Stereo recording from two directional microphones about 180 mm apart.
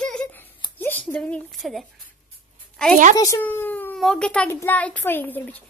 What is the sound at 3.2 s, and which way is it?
A child's voice, 15° left (ahead or behind).